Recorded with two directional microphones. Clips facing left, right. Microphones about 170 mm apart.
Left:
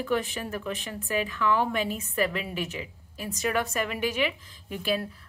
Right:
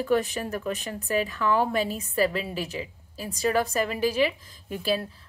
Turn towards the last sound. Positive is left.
turn(degrees=-35)  # may be behind; listen again after turning